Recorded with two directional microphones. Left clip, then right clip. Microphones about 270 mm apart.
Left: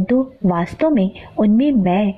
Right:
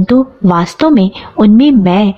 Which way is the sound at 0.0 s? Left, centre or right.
Centre.